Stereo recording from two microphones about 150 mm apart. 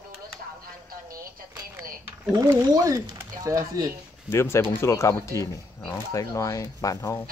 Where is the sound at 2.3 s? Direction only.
25° right (ahead or behind).